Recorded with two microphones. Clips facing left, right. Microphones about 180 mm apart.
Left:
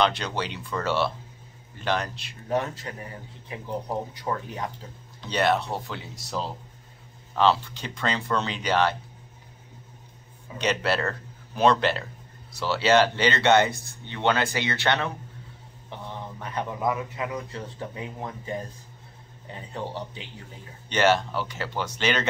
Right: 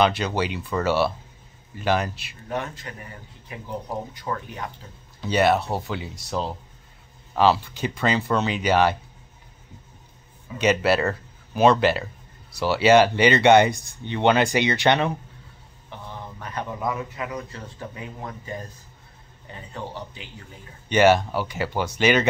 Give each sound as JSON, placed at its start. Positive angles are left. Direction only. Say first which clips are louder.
{"t": 0.0, "sound": "speech", "louder": "right 4 dB", "side_deg": -5}
{"t": 2.5, "sound": "speech", "louder": "left 3 dB", "side_deg": 35}
{"t": 5.2, "sound": "speech", "louder": "right 4 dB", "side_deg": -5}
{"t": 10.6, "sound": "speech", "louder": "right 5 dB", "side_deg": -5}
{"t": 16.3, "sound": "speech", "louder": "even", "side_deg": 20}
{"t": 19.7, "sound": "speech", "louder": "left 1 dB", "side_deg": 30}
{"t": 20.9, "sound": "speech", "louder": "right 5 dB", "side_deg": -10}